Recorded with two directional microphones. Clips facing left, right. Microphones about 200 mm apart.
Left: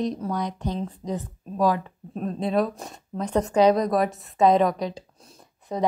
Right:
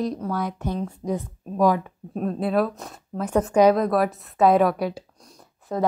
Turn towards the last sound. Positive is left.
turn(degrees=20)  # may be behind; listen again after turning